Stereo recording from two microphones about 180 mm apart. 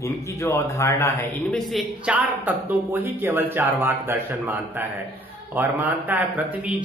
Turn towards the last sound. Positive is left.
turn(degrees=-10)  # may be behind; listen again after turning